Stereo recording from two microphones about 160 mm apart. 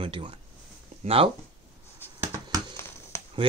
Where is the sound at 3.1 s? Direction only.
20° left (ahead or behind).